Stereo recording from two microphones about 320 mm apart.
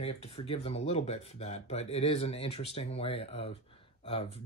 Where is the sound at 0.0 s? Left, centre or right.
Centre.